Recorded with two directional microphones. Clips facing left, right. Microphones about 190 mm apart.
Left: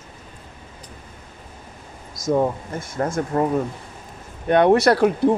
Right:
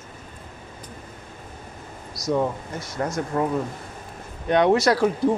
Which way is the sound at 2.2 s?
50° left (ahead or behind).